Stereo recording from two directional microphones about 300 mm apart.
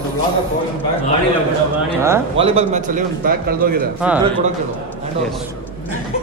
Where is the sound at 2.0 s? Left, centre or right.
Centre; by 3.8 s right.